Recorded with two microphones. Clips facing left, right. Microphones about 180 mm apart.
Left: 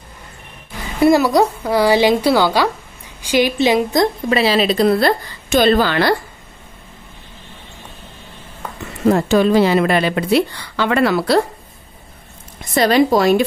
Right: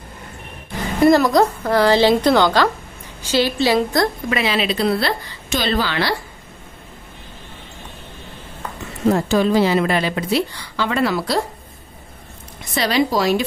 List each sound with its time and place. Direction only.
1.0 s speech: 10° left (ahead or behind)
4.3 s a woman's voice: 35° left (ahead or behind); by 6.1 s 50° left (ahead or behind)
9.1 s speech: 65° left (ahead or behind)
12.7 s a woman's voice: 50° left (ahead or behind)